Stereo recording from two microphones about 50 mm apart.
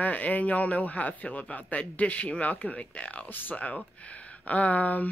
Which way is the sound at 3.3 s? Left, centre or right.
Left.